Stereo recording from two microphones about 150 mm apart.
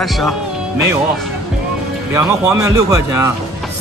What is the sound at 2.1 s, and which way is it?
A man's voice, 20° right (ahead or behind).